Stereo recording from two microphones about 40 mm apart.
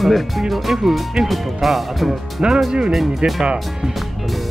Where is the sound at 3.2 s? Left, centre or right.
Right.